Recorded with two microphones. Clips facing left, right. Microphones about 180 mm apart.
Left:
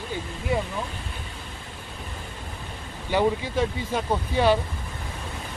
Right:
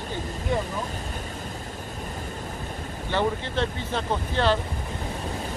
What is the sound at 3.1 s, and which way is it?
Speech, 10° left (ahead or behind).